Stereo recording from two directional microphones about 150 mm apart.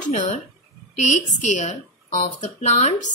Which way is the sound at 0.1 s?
50° left (ahead or behind).